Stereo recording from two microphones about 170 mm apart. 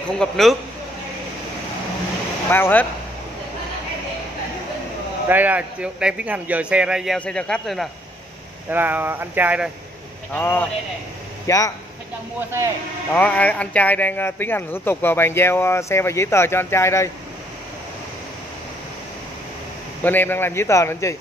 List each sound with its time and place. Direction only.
0.2 s speech: centre (ahead or behind)
2.5 s speech: 10° left (ahead or behind)
5.3 s speech: 10° right (ahead or behind)
8.6 s speech: 10° right (ahead or behind)
10.3 s a man's voice: 10° left (ahead or behind)
13.1 s speech: 10° left (ahead or behind)
20.0 s speech: 10° left (ahead or behind)